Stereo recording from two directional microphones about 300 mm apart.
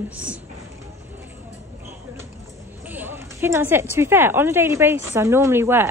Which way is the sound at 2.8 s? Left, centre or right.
Centre.